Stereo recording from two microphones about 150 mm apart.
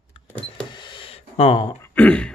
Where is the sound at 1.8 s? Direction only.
10° left (ahead or behind).